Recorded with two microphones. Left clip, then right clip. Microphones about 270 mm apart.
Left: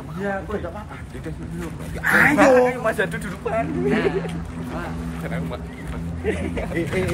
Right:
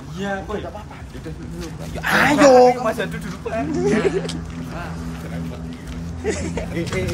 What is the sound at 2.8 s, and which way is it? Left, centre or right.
Speech, centre.